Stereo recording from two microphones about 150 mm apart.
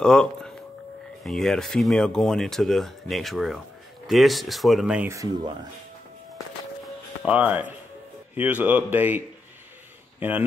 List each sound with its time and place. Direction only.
0.0 s speech: 5° left (ahead or behind)
5.0 s speech: 20° right (ahead or behind)
7.2 s speech: 10° right (ahead or behind)
10.2 s speech: 10° right (ahead or behind)